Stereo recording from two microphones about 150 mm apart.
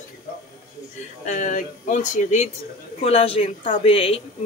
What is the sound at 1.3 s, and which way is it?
Speech, 55° left (ahead or behind).